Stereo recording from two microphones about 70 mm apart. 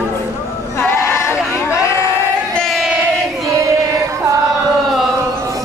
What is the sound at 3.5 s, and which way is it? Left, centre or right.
Music, right.